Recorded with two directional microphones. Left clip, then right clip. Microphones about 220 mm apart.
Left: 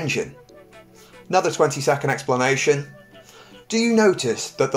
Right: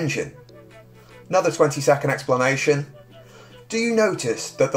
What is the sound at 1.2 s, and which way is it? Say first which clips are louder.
Speech: even; 30° left (ahead or behind).